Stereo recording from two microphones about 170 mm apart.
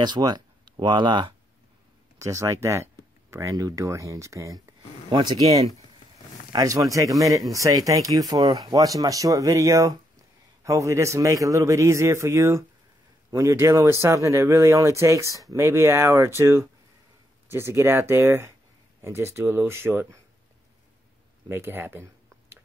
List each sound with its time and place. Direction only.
0.0 s speech: 25° right (ahead or behind)
6.5 s a man's voice: 20° right (ahead or behind)
21.5 s a man's voice: 15° right (ahead or behind)